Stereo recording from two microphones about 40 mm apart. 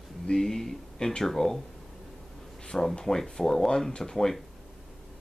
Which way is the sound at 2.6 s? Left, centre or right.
Centre.